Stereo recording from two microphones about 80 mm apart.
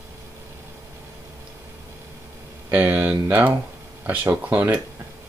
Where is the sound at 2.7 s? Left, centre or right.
Right.